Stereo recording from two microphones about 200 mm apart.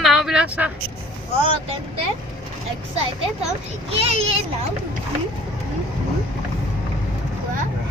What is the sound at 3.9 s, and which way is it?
Speech, 30° right (ahead or behind).